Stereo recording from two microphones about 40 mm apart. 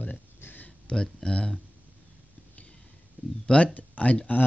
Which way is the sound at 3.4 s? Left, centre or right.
Left.